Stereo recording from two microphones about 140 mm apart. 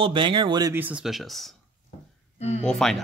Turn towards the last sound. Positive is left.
turn(degrees=0)  # may be behind; listen again after turning